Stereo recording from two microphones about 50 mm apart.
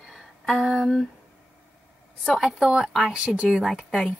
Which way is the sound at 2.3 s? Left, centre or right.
Centre.